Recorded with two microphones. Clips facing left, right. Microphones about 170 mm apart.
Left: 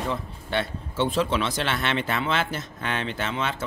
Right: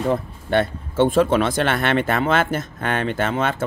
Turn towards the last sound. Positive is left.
turn(degrees=-50)  # may be behind; listen again after turning